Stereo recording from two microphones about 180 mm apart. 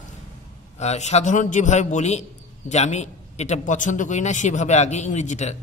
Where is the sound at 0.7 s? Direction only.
40° left (ahead or behind).